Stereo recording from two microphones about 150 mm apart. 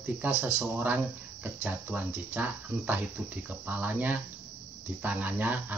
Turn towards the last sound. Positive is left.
turn(degrees=-10)  # may be behind; listen again after turning